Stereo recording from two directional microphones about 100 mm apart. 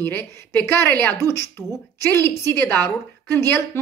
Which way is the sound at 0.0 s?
20° left (ahead or behind).